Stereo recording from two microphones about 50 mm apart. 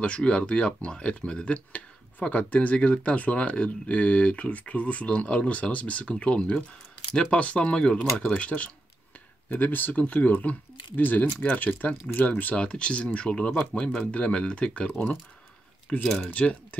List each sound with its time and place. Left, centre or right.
0.0 s speech: left
9.5 s speech: left
16.0 s speech: centre